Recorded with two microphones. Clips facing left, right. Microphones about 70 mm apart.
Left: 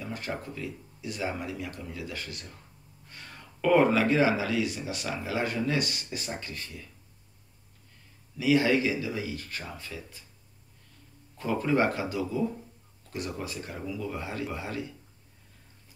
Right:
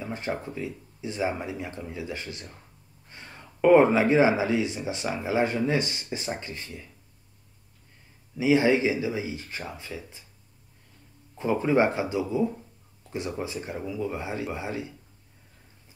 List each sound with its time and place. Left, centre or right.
0.0 s speech: right
8.4 s speech: right
11.3 s speech: right